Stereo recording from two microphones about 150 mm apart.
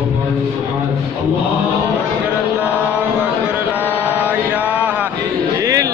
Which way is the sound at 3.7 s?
10° right (ahead or behind).